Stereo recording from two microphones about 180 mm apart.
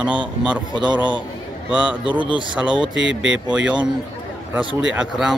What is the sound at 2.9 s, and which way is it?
Speech, 90° right.